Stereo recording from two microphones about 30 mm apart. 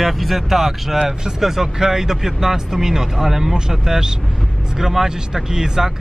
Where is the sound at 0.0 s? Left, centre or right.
Centre.